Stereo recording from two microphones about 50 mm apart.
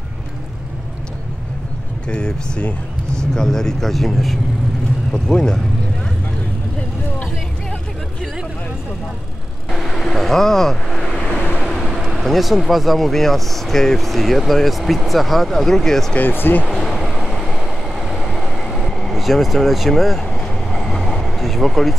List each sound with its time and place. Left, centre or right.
2.0 s speech: centre
5.1 s speech: centre
9.7 s vehicle: centre
11.9 s speech: centre
16.2 s speech: left
16.6 s vehicle: centre
19.1 s speech: centre
20.2 s vehicle: centre